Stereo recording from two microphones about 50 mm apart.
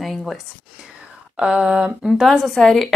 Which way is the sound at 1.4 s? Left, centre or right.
Right.